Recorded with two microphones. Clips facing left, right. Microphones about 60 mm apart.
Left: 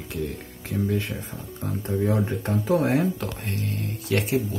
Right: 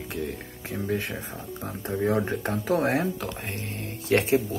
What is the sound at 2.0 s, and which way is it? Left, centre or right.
Speech, right.